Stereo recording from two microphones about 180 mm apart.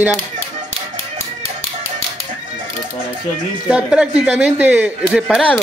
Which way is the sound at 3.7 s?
5° right (ahead or behind).